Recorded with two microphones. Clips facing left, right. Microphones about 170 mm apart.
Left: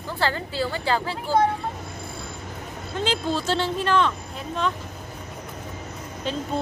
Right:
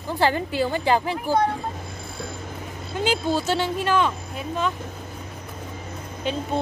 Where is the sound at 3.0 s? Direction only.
5° right (ahead or behind).